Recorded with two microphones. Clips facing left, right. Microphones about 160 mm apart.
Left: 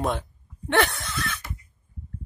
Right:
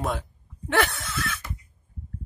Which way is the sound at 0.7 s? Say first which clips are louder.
Left 1 dB; centre (ahead or behind).